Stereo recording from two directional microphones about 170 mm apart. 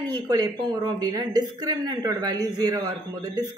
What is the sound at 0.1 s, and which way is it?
A woman's voice, 25° right (ahead or behind).